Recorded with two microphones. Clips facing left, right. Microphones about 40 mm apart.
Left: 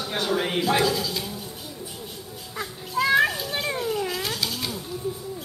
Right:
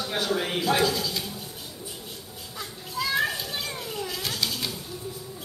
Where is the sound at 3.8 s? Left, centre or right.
Centre.